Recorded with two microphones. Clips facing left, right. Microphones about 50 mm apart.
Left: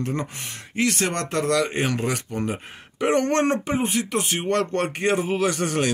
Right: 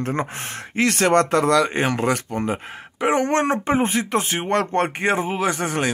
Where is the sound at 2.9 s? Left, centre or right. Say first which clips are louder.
Right 1 dB; centre.